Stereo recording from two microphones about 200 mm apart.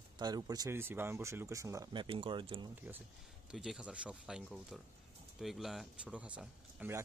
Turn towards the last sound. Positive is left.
turn(degrees=-5)  # may be behind; listen again after turning